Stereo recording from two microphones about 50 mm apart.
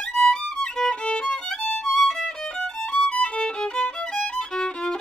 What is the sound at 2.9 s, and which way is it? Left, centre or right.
Violin, centre.